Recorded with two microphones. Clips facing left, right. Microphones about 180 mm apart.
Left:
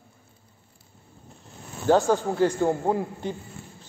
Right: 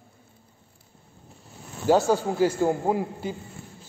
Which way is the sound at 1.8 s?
10° right (ahead or behind).